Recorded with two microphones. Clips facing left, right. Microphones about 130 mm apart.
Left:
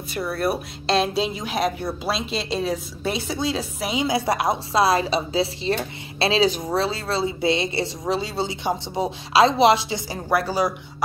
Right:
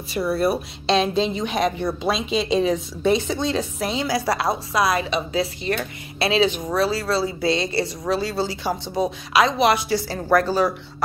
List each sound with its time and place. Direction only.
0.1 s a woman's voice: centre (ahead or behind)
4.0 s a woman's voice: 20° left (ahead or behind)